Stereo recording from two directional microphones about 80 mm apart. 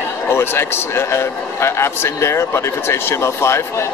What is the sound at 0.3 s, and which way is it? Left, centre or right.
A man's voice, left.